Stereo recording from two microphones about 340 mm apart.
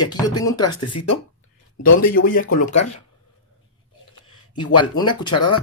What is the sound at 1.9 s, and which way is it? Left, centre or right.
A man's voice, left.